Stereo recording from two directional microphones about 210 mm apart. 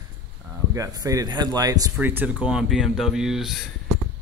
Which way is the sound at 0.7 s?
15° right (ahead or behind).